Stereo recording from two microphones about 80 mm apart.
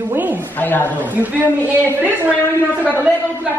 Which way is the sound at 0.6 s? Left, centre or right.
Left.